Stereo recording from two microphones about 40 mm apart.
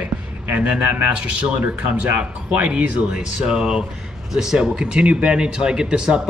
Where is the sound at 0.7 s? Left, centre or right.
Right.